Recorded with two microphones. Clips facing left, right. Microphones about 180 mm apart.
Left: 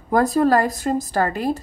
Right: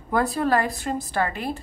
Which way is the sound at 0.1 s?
40° left (ahead or behind).